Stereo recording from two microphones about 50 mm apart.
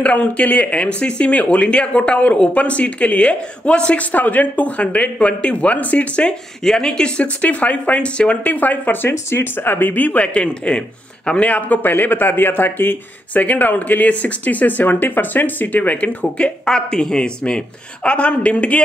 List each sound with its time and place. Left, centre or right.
0.0 s speech: left
6.6 s speech: centre
7.4 s speech: left
8.5 s speech: left
16.6 s speech: centre